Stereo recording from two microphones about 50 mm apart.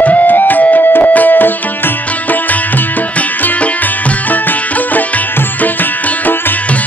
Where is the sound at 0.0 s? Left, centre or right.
Left.